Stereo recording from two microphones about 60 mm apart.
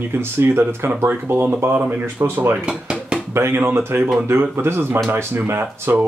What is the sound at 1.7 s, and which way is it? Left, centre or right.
Speech, right.